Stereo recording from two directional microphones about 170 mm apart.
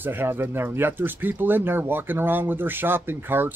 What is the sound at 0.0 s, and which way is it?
Speech, 10° right (ahead or behind).